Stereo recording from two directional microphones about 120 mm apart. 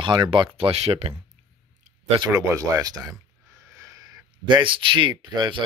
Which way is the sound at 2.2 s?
25° right (ahead or behind).